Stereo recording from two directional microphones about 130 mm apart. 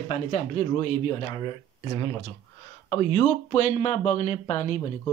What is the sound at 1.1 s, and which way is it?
Speech, 35° left (ahead or behind).